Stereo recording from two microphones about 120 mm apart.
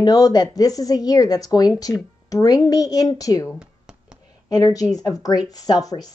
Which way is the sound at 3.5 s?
5° right (ahead or behind).